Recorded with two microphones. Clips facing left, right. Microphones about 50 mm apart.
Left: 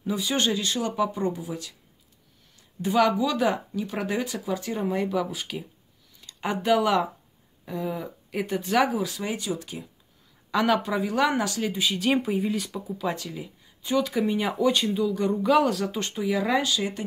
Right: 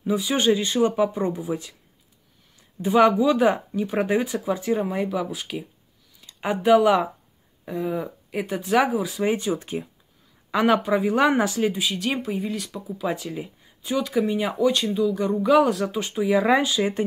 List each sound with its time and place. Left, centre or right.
0.0 s speech: centre
0.5 s speech: right
3.0 s speech: right
4.8 s speech: centre
9.2 s speech: right
10.5 s speech: right
10.8 s speech: centre
11.7 s speech: centre
16.3 s speech: right